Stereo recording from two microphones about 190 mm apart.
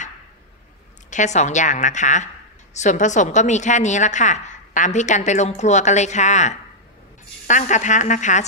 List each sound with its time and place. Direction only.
1.1 s a woman's voice: 40° left (ahead or behind)